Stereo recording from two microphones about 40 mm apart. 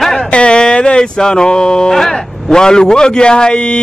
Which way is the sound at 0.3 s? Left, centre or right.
Left.